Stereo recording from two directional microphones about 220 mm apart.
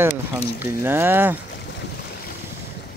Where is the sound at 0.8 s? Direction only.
10° right (ahead or behind).